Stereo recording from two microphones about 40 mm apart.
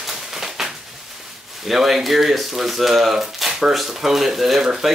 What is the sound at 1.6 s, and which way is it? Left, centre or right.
Speech, centre.